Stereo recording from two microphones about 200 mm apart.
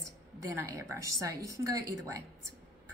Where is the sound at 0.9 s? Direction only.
15° right (ahead or behind).